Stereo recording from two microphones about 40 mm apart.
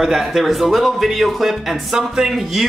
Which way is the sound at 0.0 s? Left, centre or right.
Centre.